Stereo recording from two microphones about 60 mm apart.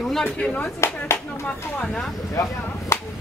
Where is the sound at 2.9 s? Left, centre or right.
Left.